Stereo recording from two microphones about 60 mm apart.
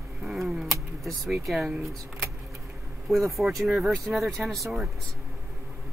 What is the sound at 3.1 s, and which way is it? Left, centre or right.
Speech, centre.